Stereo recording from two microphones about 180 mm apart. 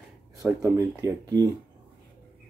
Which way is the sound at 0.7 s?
20° right (ahead or behind).